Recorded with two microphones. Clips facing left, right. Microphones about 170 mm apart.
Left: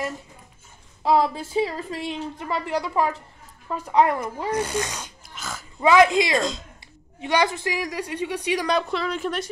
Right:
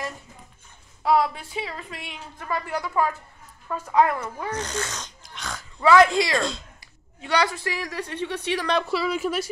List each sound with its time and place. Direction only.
1.0 s speech: 30° left (ahead or behind)
2.3 s speech: 20° left (ahead or behind); by 5.7 s 5° left (ahead or behind)
5.8 s speech: 20° left (ahead or behind)
6.3 s a woman's voice: centre (ahead or behind)
6.8 s a woman's voice: 20° left (ahead or behind)
8.7 s a woman's voice: 5° right (ahead or behind)